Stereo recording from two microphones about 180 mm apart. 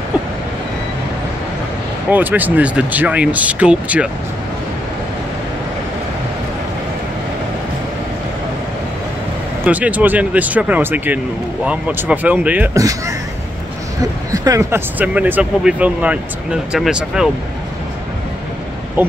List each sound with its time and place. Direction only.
2.0 s speech: 10° right (ahead or behind)
9.7 s speech: 10° right (ahead or behind)
14.3 s speech: 20° right (ahead or behind); by 17.3 s 5° right (ahead or behind)
19.0 s speech: 10° right (ahead or behind)